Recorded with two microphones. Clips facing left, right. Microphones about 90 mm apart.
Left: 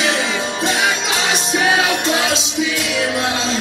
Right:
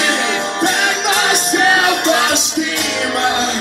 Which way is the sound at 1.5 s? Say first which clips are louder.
Right 2 dB; centre (ahead or behind).